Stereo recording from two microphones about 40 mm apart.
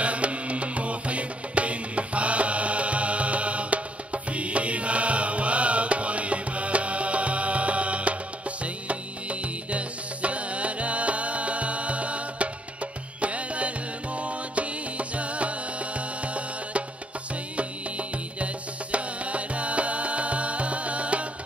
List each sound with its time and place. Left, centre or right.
0.0 s music: right